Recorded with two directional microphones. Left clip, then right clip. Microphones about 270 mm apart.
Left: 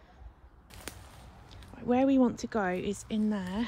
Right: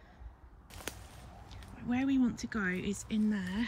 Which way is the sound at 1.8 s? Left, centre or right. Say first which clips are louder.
Left 7 dB; centre.